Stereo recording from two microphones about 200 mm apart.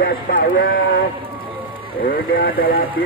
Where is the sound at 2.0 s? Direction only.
45° left (ahead or behind).